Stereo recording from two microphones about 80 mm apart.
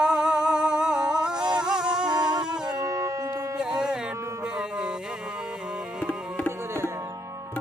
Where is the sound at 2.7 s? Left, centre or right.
Right.